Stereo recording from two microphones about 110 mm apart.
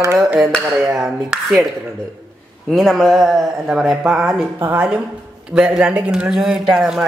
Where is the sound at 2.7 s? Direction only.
5° left (ahead or behind).